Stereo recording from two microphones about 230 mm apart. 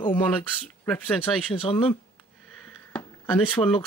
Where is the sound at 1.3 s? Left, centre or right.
Centre.